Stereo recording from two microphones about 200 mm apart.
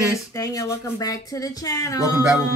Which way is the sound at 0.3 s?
15° left (ahead or behind).